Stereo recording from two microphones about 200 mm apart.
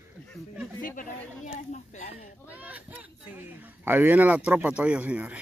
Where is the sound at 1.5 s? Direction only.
35° left (ahead or behind).